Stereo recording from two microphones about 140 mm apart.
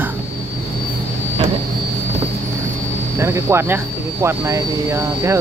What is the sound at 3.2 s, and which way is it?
Speech, 20° right (ahead or behind).